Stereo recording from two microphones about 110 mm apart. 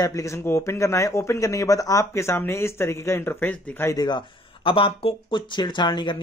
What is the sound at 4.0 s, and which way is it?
Speech, 45° left (ahead or behind).